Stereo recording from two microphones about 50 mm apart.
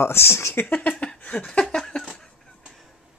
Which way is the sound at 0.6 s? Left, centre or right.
Left.